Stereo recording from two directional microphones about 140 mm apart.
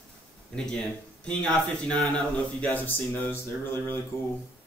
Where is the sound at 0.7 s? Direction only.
5° left (ahead or behind).